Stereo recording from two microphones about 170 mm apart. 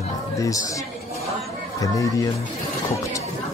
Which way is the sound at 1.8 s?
20° left (ahead or behind).